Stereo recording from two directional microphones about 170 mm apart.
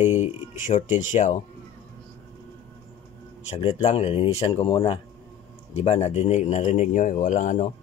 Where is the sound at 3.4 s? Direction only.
40° left (ahead or behind).